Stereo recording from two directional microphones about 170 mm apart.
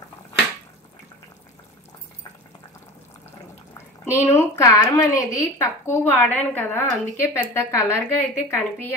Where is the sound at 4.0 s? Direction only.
15° left (ahead or behind).